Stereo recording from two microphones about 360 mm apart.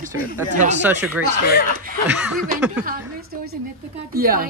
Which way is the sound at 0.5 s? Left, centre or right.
Centre.